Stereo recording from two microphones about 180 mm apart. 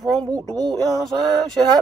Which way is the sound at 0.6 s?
20° right (ahead or behind).